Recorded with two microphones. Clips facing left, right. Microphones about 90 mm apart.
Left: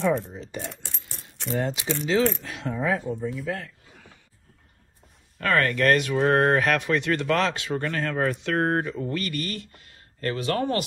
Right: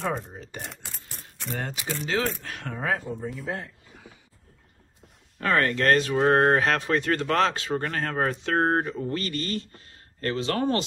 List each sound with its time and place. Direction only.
0.3 s speech: 45° right (ahead or behind)
1.6 s speech: 45° right (ahead or behind)
3.2 s speech: 40° right (ahead or behind)
4.1 s a sound: 10° right (ahead or behind)
5.4 s speech: 25° right (ahead or behind)